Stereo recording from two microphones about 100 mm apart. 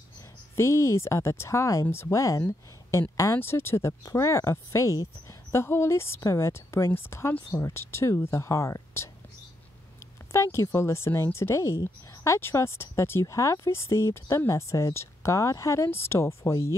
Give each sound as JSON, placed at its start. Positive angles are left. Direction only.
{"t": 0.6, "sound": "speech", "side_deg": 30}
{"t": 10.3, "sound": "speech", "side_deg": 30}